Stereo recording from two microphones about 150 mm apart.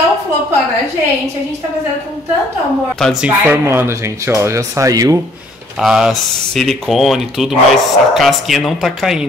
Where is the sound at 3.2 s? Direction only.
10° right (ahead or behind).